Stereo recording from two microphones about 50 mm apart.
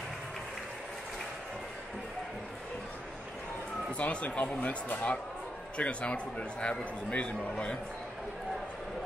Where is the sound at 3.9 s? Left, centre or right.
Left.